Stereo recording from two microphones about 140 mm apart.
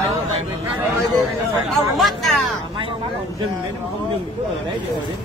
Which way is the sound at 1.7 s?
Centre (ahead or behind).